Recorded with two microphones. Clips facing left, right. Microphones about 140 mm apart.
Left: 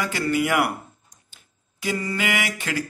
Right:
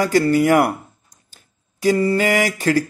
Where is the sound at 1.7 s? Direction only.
40° right (ahead or behind).